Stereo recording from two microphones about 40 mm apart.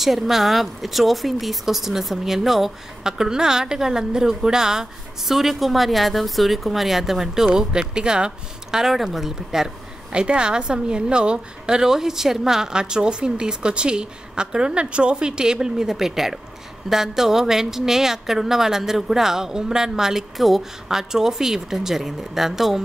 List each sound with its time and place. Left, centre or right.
0.0 s speech: centre
3.0 s a woman's voice: centre
7.4 s a woman's voice: centre
8.7 s a woman's voice: centre
10.1 s a woman's voice: right; by 22.8 s centre